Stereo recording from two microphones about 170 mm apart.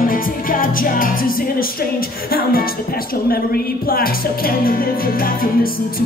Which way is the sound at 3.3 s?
60° left (ahead or behind).